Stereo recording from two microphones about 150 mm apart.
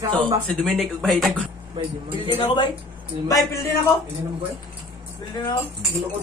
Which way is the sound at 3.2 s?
25° left (ahead or behind).